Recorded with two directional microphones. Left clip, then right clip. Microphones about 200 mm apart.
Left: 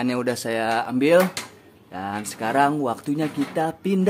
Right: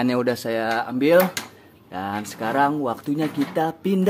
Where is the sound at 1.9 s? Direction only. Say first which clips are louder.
Right 1 dB; 10° right (ahead or behind).